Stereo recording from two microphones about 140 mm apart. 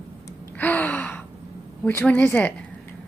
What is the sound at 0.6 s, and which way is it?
Gasp, 10° left (ahead or behind).